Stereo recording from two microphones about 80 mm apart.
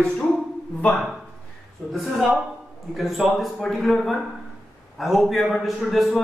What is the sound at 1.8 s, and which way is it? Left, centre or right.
Speech, centre.